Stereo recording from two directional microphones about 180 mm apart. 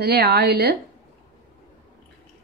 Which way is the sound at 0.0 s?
65° right (ahead or behind).